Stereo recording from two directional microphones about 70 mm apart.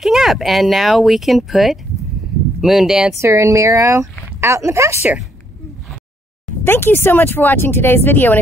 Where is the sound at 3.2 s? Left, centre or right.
Right.